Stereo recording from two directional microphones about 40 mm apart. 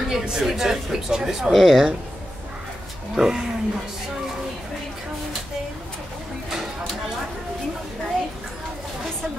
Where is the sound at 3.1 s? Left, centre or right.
Centre.